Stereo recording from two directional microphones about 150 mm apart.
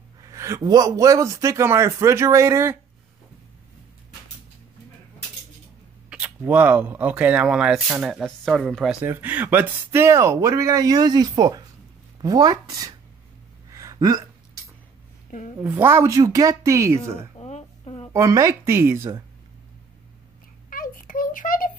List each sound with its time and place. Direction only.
0.2 s a man's voice: 20° right (ahead or behind)
6.0 s speech: 10° right (ahead or behind)
9.0 s a man's voice: 15° right (ahead or behind)
13.7 s hiccup: 25° right (ahead or behind)
15.6 s a man's voice: 15° right (ahead or behind)
17.4 s a sound: 45° left (ahead or behind)
18.1 s a man's voice: 20° right (ahead or behind)
20.7 s a sound: 70° left (ahead or behind)